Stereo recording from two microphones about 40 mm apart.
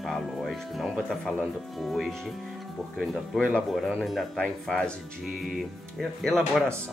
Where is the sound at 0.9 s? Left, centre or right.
Centre.